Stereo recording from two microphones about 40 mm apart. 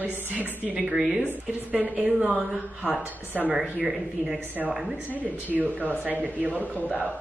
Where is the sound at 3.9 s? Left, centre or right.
Centre.